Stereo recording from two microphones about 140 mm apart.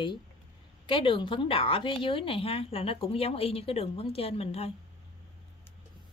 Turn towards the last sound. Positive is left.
turn(degrees=45)  # may be behind; listen again after turning